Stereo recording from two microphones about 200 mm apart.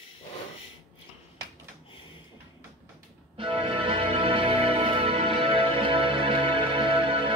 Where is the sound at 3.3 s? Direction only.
25° right (ahead or behind).